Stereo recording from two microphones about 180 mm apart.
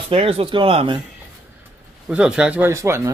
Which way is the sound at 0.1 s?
35° right (ahead or behind).